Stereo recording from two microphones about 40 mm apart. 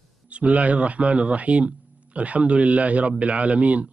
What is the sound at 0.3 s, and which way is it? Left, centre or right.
Speech, right.